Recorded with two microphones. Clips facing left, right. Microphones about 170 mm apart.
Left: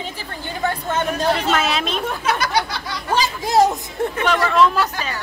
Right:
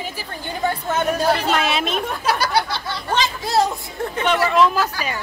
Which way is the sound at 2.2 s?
35° right (ahead or behind).